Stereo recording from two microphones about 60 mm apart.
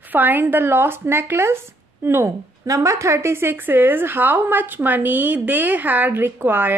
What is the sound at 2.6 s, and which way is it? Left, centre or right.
A woman's voice, right.